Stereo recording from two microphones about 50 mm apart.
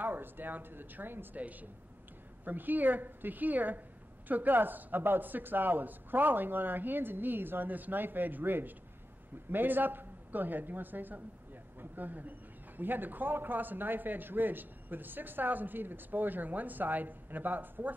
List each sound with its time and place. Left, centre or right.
0.0 s speech: right
1.4 s a man's voice: right